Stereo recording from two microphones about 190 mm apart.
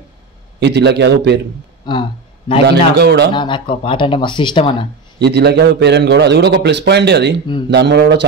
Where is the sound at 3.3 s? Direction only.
25° left (ahead or behind).